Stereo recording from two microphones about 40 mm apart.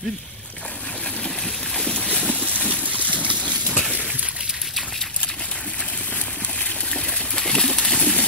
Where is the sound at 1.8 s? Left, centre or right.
Left.